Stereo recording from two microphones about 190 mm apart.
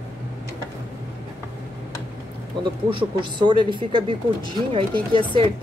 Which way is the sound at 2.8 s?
25° right (ahead or behind).